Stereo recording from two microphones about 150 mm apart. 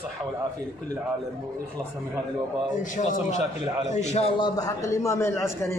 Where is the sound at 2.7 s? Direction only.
60° left (ahead or behind).